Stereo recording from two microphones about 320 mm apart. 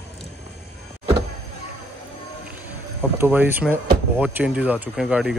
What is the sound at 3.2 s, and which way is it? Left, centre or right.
Speech, centre.